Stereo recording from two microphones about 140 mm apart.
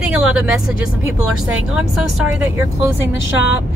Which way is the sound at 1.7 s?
5° right (ahead or behind).